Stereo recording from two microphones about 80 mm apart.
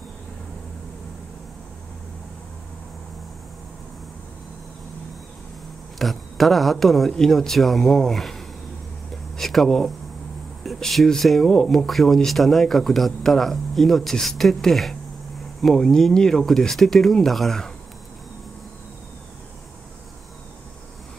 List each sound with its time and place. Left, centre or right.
5.9 s speech: centre